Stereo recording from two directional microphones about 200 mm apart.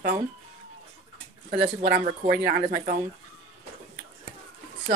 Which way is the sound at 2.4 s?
45° right (ahead or behind).